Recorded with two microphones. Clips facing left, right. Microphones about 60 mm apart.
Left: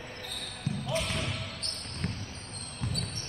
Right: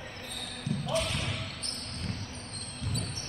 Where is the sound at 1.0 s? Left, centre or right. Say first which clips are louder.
Even; centre.